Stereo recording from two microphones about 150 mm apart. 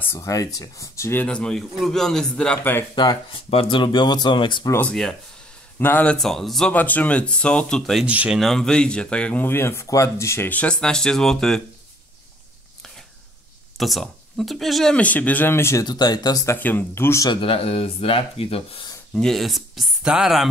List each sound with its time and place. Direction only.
0.0 s speech: 20° left (ahead or behind)
1.2 s speech: 5° left (ahead or behind)
3.0 s speech: 30° left (ahead or behind)
4.6 s speech: 10° left (ahead or behind)
13.7 s speech: centre (ahead or behind); by 16.5 s 25° left (ahead or behind)
16.5 s speech: 10° left (ahead or behind)
17.3 s speech: 40° left (ahead or behind)
19.1 s speech: 5° left (ahead or behind)